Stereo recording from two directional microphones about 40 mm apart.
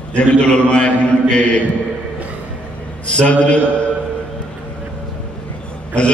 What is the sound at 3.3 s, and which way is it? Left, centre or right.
Speech, left.